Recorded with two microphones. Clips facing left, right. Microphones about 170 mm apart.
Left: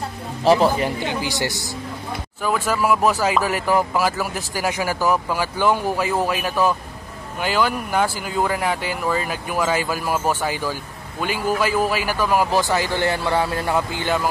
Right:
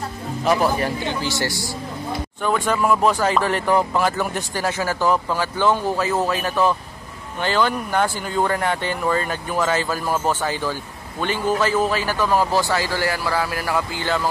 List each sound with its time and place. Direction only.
0.4 s speech: 30° left (ahead or behind)
0.8 s speech: 15° left (ahead or behind)
2.4 s speech: 5° left (ahead or behind)